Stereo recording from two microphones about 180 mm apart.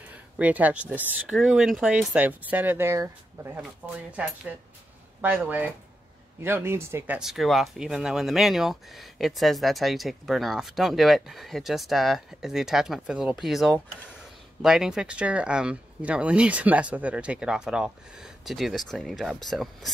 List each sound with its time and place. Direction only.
0.1 s speech: 10° right (ahead or behind)
4.2 s speech: 10° right (ahead or behind)
7.2 s speech: centre (ahead or behind)